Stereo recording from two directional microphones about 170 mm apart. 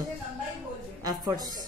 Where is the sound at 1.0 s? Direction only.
20° right (ahead or behind).